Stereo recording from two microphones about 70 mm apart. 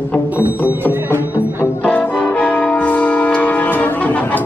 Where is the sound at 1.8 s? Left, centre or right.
Centre.